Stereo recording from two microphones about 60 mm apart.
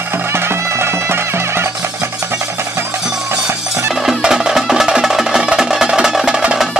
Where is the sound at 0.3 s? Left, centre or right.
Right.